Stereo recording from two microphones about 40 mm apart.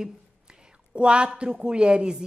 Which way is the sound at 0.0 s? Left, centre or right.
Right.